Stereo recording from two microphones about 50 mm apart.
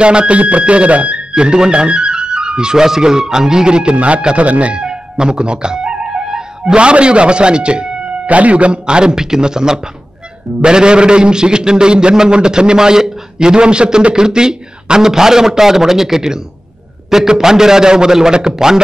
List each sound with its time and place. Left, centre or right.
0.0 s a man's voice: centre